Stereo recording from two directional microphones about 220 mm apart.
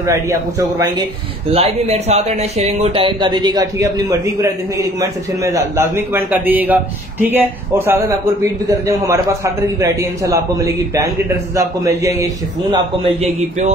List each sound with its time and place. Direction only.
0.0 s a man's voice: 15° right (ahead or behind)
1.5 s speech: 30° right (ahead or behind)
5.4 s a man's voice: 15° right (ahead or behind)